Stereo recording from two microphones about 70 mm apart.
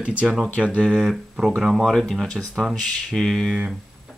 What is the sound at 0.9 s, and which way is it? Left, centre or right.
Speech, centre.